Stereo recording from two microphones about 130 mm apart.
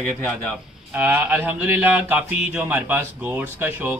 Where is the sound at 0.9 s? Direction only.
10° right (ahead or behind).